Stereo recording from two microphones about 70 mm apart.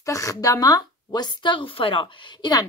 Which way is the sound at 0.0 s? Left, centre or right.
Left.